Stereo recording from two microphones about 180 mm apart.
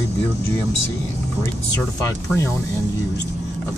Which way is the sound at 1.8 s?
15° left (ahead or behind).